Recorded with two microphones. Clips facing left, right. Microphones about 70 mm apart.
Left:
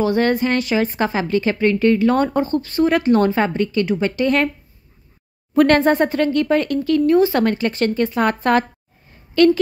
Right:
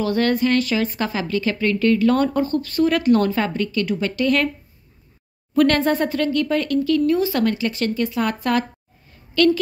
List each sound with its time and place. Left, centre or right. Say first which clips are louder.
0.0 s a woman's voice: left 2 dB; left
5.6 s a woman's voice: left 3 dB; left